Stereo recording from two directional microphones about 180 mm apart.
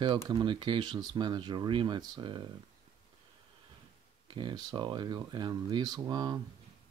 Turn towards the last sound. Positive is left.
turn(degrees=-20)  # may be behind; listen again after turning